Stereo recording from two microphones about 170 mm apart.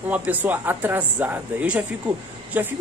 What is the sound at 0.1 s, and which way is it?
Speech, 10° right (ahead or behind).